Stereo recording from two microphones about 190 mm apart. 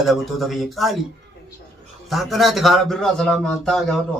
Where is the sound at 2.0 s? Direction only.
Centre (ahead or behind).